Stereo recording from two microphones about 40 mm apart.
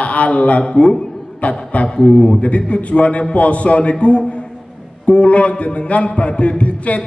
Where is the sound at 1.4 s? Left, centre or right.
Left.